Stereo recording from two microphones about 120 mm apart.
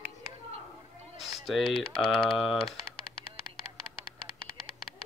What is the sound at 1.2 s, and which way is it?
Speech, centre (ahead or behind).